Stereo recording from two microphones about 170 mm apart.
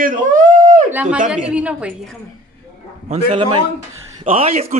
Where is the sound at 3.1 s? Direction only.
35° right (ahead or behind).